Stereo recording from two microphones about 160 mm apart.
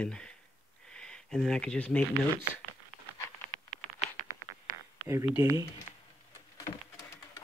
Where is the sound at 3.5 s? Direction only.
45° left (ahead or behind).